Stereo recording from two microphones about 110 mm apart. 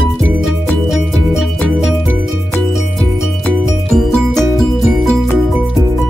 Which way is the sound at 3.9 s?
5° left (ahead or behind).